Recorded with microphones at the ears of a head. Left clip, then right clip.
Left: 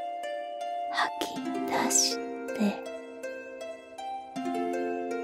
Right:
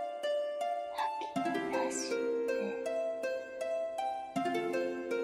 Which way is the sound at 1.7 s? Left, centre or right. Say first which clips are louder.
Left 7 dB; left.